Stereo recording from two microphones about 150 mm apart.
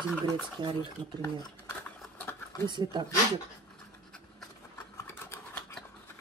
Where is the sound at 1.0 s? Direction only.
30° right (ahead or behind).